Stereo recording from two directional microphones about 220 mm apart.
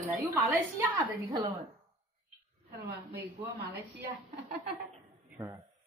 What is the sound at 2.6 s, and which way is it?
Speech, 45° right (ahead or behind).